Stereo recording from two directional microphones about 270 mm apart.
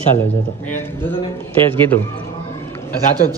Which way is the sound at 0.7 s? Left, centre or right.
Centre.